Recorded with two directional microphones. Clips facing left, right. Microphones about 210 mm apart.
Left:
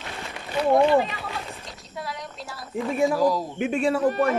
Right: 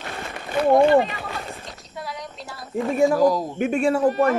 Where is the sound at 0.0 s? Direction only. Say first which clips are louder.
Right 3 dB; 50° right (ahead or behind).